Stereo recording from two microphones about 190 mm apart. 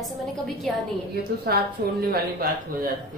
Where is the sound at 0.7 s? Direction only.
Centre (ahead or behind).